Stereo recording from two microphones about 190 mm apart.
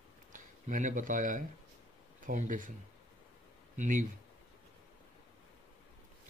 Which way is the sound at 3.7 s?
40° right (ahead or behind).